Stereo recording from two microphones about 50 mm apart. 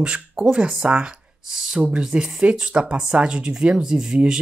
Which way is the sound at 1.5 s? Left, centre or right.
Centre.